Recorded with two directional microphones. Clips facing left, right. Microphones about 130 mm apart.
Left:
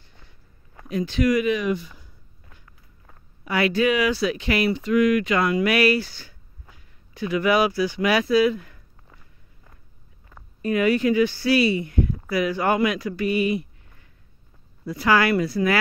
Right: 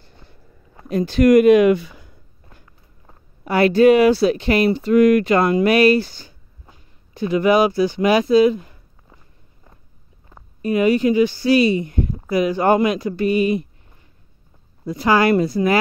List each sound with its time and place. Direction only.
0.9 s speech: 40° right (ahead or behind); by 2.1 s 70° right (ahead or behind)
3.4 s speech: 35° right (ahead or behind)
5.7 s speech: 25° right (ahead or behind)
10.3 s speech: 20° right (ahead or behind)
14.9 s speech: 20° right (ahead or behind)